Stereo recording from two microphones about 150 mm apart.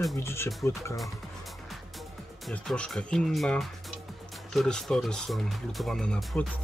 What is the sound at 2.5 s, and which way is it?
Speech, 5° left (ahead or behind).